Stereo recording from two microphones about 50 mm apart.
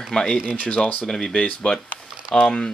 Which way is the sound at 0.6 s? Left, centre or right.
Left.